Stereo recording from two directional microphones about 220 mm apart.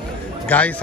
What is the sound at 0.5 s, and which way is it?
Speech, 10° left (ahead or behind).